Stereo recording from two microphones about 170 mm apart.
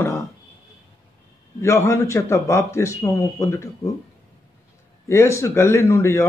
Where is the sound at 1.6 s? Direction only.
15° left (ahead or behind).